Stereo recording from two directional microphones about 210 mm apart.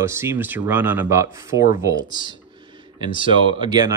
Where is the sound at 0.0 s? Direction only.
10° right (ahead or behind).